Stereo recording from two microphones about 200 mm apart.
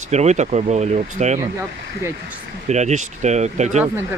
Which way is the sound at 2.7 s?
35° right (ahead or behind).